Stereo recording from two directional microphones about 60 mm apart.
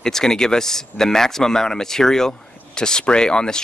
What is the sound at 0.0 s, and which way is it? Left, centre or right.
Speech, centre.